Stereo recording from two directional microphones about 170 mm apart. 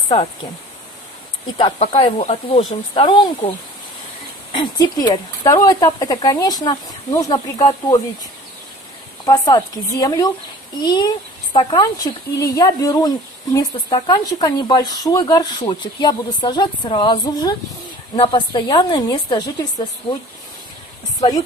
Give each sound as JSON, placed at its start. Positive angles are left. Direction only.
{"t": 1.6, "sound": "speech", "side_deg": 30}
{"t": 9.2, "sound": "speech", "side_deg": 20}